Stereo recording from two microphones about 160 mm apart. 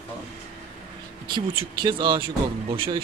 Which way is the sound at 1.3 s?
30° right (ahead or behind).